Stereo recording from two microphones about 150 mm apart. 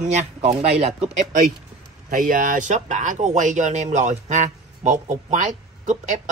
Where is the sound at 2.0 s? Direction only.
65° right (ahead or behind).